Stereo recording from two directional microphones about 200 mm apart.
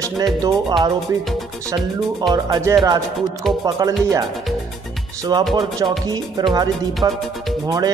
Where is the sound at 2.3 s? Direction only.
15° right (ahead or behind).